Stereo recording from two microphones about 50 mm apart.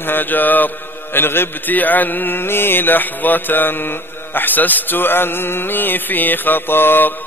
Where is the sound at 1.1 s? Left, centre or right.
Left.